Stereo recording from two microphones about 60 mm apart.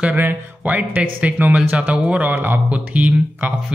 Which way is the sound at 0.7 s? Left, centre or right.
Right.